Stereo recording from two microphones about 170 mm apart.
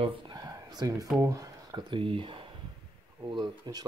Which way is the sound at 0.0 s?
25° right (ahead or behind).